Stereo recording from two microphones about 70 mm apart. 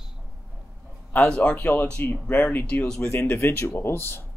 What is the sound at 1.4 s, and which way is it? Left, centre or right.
Speech, left.